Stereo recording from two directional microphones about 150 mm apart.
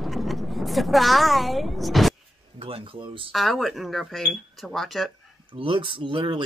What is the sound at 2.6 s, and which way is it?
Speech, 35° right (ahead or behind).